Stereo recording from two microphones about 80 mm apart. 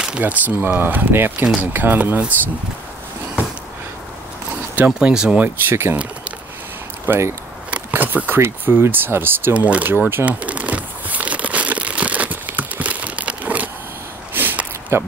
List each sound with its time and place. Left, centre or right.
0.2 s speech: right
1.4 s speech: centre
4.9 s speech: centre
5.4 s speech: right
7.1 s speech: right
7.7 s speech: right
8.5 s a sound: right